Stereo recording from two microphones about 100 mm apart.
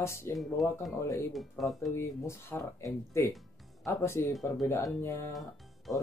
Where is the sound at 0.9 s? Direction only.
25° left (ahead or behind).